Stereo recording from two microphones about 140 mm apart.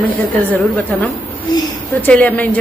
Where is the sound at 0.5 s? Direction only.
10° left (ahead or behind).